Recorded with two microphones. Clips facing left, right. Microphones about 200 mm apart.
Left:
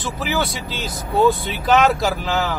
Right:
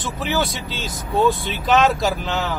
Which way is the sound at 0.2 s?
Centre (ahead or behind).